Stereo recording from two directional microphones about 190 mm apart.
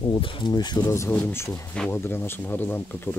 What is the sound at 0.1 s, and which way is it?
Speech, 25° left (ahead or behind).